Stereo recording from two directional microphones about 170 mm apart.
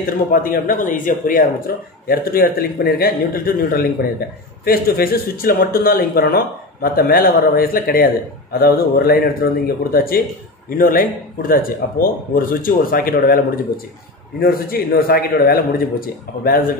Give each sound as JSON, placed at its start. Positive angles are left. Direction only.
{"t": 0.0, "sound": "speech", "side_deg": 55}
{"t": 14.4, "sound": "speech", "side_deg": 60}